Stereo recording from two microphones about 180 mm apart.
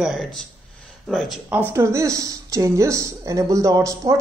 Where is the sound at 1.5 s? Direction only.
10° right (ahead or behind).